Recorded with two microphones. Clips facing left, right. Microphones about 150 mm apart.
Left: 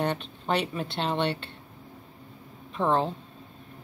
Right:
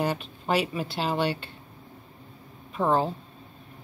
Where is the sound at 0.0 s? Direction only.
5° right (ahead or behind).